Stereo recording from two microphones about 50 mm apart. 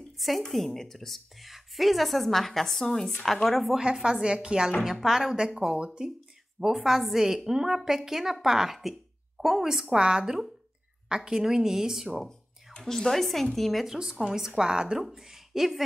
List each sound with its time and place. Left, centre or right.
0.5 s a woman's voice: centre
3.7 s a woman's voice: centre
12.7 s a woman's voice: centre
13.8 s a woman's voice: centre